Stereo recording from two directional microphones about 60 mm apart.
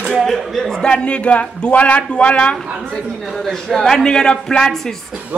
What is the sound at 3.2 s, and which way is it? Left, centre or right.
A man's voice, centre.